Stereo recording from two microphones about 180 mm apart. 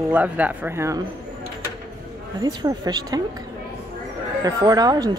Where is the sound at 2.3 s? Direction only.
20° right (ahead or behind).